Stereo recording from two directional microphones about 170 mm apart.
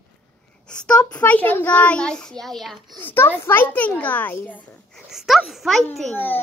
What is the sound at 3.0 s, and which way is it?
A child's voice, 15° left (ahead or behind).